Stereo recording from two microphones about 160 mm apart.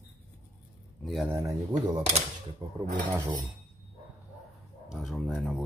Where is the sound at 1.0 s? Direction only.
Centre (ahead or behind).